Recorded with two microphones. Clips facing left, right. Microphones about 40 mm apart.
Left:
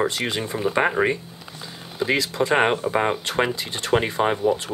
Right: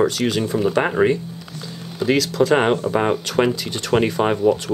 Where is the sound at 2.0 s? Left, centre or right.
Left.